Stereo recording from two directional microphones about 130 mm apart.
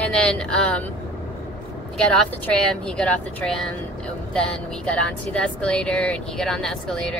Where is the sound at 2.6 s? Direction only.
5° left (ahead or behind).